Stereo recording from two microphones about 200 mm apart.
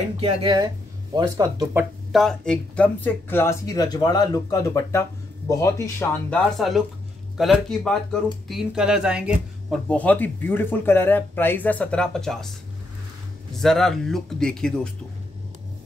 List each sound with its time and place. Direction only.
0.2 s speech: 25° right (ahead or behind)
2.1 s speech: 5° left (ahead or behind)
6.5 s speech: centre (ahead or behind)
9.8 s speech: 5° left (ahead or behind)
13.6 s speech: centre (ahead or behind)